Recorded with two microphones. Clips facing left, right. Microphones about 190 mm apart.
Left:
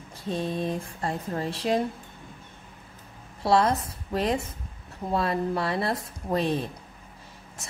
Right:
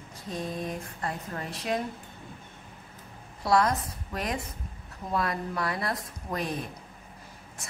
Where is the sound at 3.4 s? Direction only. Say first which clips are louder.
Left 2 dB; 25° left (ahead or behind).